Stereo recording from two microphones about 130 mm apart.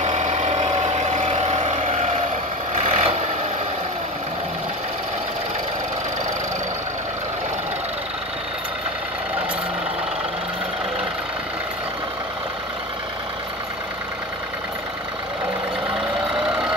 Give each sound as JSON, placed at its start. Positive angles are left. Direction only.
{"t": 0.0, "sound": "vehicle", "side_deg": -65}
{"t": 16.3, "sound": "vehicle", "side_deg": -5}